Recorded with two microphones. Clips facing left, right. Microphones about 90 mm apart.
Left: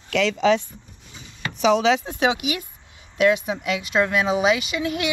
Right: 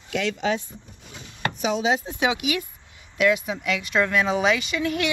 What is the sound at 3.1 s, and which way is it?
Speech, 25° left (ahead or behind).